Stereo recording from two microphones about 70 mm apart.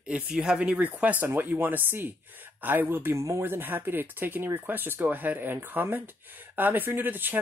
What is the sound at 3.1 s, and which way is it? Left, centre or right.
Speech, right.